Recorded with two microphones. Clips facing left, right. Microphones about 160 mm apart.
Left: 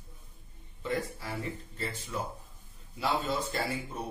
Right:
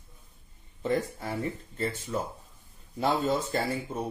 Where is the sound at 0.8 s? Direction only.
35° right (ahead or behind).